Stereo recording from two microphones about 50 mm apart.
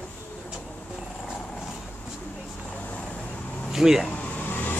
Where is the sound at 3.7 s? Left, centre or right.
Centre.